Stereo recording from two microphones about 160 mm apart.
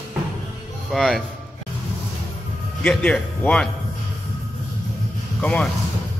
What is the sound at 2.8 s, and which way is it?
Speech, 5° left (ahead or behind).